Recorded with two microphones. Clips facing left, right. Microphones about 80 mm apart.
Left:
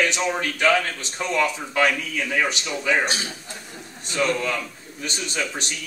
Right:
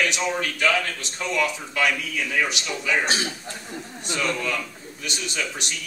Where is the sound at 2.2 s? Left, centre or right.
Centre.